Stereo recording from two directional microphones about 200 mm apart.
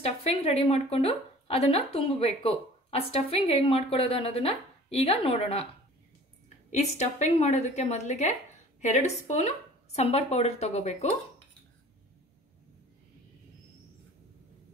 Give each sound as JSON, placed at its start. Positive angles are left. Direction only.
{"t": 0.0, "sound": "speech", "side_deg": 30}
{"t": 6.7, "sound": "a woman's voice", "side_deg": 35}